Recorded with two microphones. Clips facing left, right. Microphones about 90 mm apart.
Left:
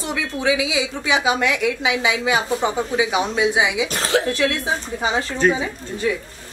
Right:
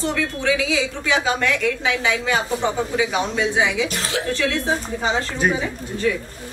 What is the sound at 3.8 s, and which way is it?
Speech, 40° left (ahead or behind).